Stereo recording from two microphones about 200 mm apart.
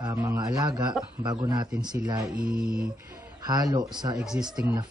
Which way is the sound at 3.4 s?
20° right (ahead or behind).